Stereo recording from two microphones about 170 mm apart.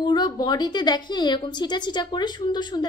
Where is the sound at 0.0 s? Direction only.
25° left (ahead or behind).